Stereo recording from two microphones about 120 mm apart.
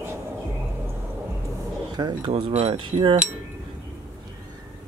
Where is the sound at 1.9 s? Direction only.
40° right (ahead or behind).